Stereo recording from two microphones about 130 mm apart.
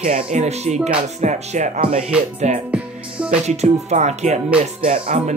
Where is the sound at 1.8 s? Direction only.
55° right (ahead or behind).